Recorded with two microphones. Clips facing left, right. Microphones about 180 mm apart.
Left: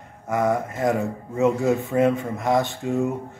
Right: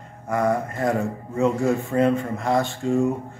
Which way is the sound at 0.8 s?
15° left (ahead or behind).